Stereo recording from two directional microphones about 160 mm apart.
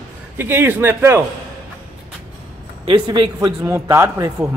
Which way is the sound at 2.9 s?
25° right (ahead or behind).